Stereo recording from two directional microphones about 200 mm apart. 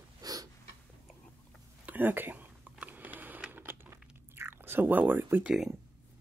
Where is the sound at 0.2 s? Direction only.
20° right (ahead or behind).